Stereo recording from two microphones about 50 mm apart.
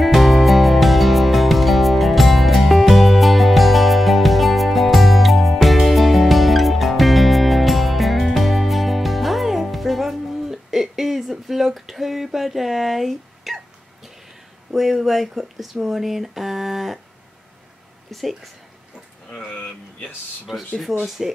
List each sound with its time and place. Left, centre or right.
0.0 s music: centre
14.7 s speech: centre
18.1 s a woman's voice: centre
19.3 s speech: left
20.5 s a woman's voice: centre